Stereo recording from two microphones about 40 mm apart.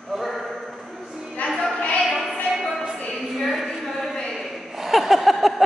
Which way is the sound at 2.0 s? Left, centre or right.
Centre.